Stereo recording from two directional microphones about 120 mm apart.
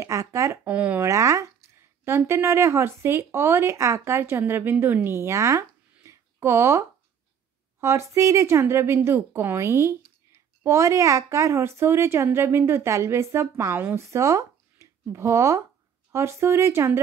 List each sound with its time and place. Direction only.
0.0 s a woman's voice: 25° right (ahead or behind)
0.7 s speech: 15° right (ahead or behind)
1.0 s a woman's voice: 25° right (ahead or behind)